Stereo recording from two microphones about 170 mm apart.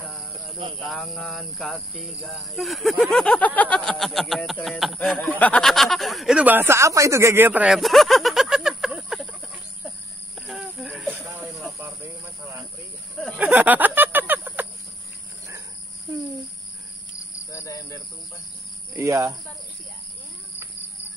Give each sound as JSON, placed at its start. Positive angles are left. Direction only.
{"t": 0.7, "sound": "cricket", "side_deg": 0}
{"t": 9.8, "sound": "snake", "side_deg": -5}
{"t": 13.4, "sound": "a sound", "side_deg": -10}
{"t": 17.5, "sound": "cricket", "side_deg": 20}
{"t": 18.9, "sound": "speech", "side_deg": -15}